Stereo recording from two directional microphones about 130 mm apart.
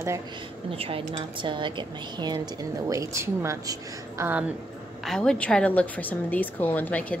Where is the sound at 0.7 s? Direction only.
45° right (ahead or behind).